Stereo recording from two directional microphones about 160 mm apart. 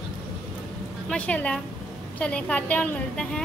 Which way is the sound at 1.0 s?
10° left (ahead or behind).